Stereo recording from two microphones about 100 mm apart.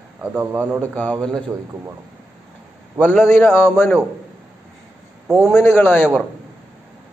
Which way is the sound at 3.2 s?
25° left (ahead or behind).